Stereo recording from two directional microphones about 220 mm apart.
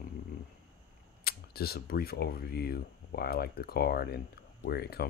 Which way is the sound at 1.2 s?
45° left (ahead or behind).